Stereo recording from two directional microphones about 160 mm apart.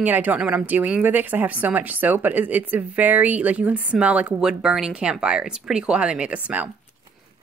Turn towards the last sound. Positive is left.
turn(degrees=-10)  # may be behind; listen again after turning